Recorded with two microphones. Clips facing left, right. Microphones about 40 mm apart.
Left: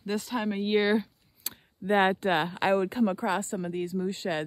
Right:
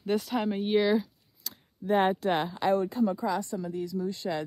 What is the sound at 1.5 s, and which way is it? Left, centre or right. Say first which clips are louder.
Speech: left 1 dB; left.